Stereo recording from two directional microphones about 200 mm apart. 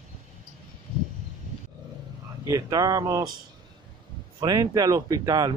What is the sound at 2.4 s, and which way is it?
Speech, 15° right (ahead or behind).